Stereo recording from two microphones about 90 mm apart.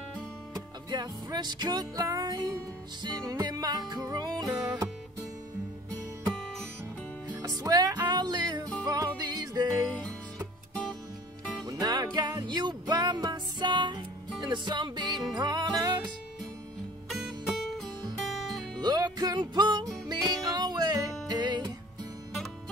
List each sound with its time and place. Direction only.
0.8 s music: 50° right (ahead or behind)
7.2 s music: 45° right (ahead or behind)
11.6 s music: 45° right (ahead or behind)
17.1 s music: centre (ahead or behind)
18.8 s music: 50° right (ahead or behind)